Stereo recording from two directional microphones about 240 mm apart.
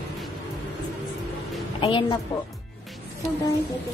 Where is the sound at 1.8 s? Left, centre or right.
Left.